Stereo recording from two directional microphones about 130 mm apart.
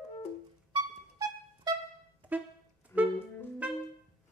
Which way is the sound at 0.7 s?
25° right (ahead or behind).